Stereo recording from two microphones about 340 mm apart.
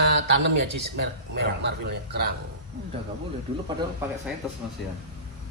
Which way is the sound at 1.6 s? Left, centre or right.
Right.